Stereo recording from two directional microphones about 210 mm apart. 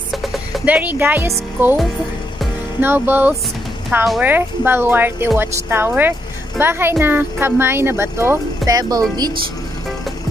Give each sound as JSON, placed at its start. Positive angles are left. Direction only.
{"t": 0.1, "sound": "speech", "side_deg": 0}